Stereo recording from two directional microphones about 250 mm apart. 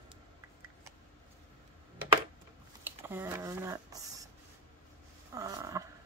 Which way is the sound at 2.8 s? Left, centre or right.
Centre.